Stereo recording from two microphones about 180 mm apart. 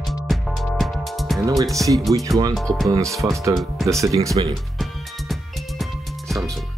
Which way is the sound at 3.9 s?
15° right (ahead or behind).